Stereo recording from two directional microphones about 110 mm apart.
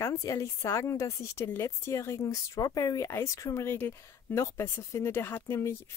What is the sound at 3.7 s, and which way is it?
Speech, 20° left (ahead or behind).